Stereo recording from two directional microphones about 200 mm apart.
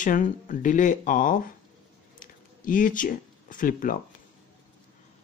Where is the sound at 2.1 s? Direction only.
40° left (ahead or behind).